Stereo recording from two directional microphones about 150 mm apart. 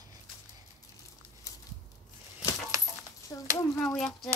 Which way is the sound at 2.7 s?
20° right (ahead or behind).